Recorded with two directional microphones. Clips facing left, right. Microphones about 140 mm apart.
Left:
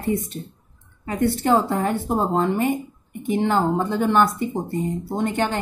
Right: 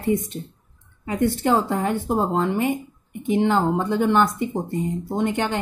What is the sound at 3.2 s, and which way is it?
Speech, 15° right (ahead or behind).